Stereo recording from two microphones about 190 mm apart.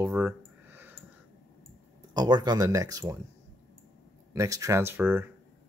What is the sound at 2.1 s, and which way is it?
Speech, 20° right (ahead or behind).